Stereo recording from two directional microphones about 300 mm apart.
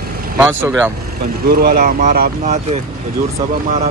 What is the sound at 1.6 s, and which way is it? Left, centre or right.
Speech, right.